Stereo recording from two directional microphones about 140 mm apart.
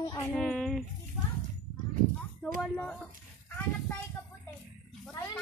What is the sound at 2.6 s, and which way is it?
Speech, 10° left (ahead or behind).